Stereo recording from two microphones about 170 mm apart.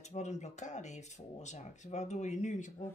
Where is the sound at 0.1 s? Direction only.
45° left (ahead or behind).